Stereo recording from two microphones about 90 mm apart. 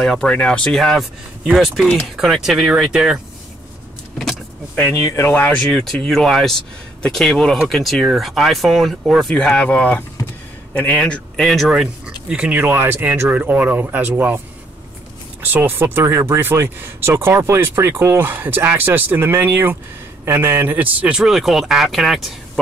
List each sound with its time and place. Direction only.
0.0 s speech: 5° left (ahead or behind)
4.9 s speech: 35° left (ahead or behind)
5.3 s speech: 20° left (ahead or behind)
5.7 s speech: 10° left (ahead or behind)
9.6 s speech: 15° left (ahead or behind)
11.4 s speech: centre (ahead or behind)
12.5 s speech: 20° right (ahead or behind)
15.4 s speech: 25° right (ahead or behind); by 22.2 s centre (ahead or behind)